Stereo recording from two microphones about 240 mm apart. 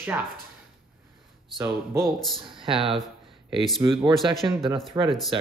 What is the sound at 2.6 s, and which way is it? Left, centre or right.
Speech, right.